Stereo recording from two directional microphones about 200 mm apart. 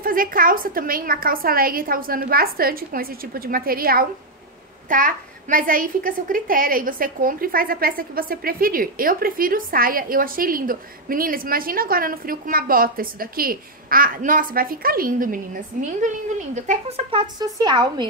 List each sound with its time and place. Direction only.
0.0 s a child's voice: 45° right (ahead or behind); by 18.0 s 20° right (ahead or behind)